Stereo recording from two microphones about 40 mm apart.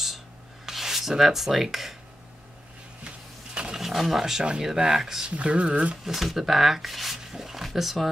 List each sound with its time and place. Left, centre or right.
0.7 s rub: centre
3.7 s speech: centre
5.3 s speech: right
6.0 s speech: centre